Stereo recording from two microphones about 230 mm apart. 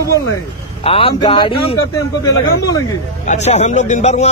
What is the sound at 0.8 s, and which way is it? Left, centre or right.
Speech, left.